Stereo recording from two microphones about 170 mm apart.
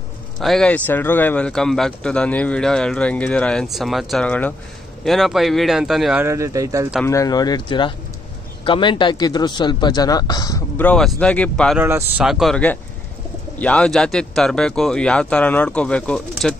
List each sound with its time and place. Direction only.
0.4 s speech: centre (ahead or behind)
6.2 s speech: 20° right (ahead or behind)
7.1 s speech: 20° left (ahead or behind)
10.8 s speech: 5° left (ahead or behind)
11.8 s speech: 10° right (ahead or behind)
12.3 s speech: centre (ahead or behind)